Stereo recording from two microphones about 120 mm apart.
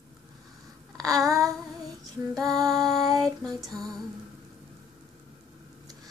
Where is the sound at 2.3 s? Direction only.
Centre (ahead or behind).